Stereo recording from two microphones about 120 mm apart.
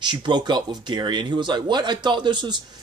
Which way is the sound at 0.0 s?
40° right (ahead or behind).